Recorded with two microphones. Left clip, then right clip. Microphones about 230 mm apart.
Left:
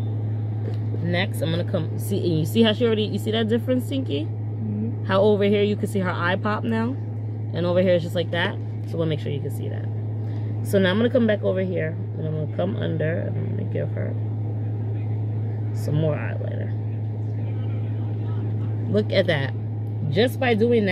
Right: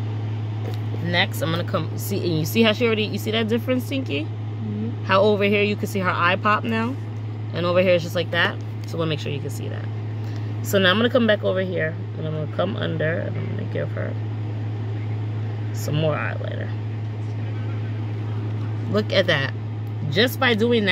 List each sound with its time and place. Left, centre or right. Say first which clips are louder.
1.0 s speech: right 4 dB; centre
10.7 s speech: right 2 dB; centre
15.8 s speech: right 3 dB; centre
18.9 s speech: right 1 dB; centre